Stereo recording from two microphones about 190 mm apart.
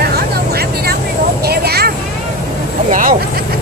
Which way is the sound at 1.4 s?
55° right (ahead or behind).